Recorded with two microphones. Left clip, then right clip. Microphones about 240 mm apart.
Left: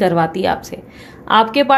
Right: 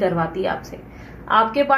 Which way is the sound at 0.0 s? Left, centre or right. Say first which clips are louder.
Left 6 dB; left.